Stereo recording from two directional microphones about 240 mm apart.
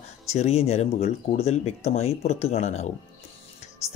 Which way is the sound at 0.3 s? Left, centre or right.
Left.